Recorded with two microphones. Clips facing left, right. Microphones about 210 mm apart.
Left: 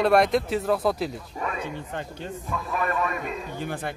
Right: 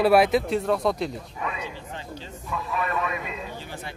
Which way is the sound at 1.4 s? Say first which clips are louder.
Left 3 dB; 50° left (ahead or behind).